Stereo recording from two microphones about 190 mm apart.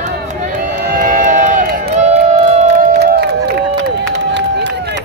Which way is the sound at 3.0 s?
60° right (ahead or behind).